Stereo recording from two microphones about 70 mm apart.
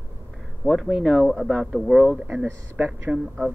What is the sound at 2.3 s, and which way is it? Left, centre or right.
Speech, right.